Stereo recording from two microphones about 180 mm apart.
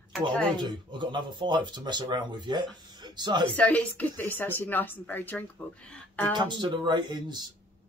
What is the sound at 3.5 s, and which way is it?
A woman's voice, 5° left (ahead or behind).